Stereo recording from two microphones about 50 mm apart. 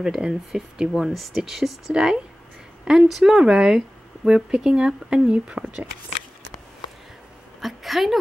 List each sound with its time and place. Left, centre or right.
0.0 s speech: centre
0.3 s a woman's voice: centre
7.6 s a woman's voice: centre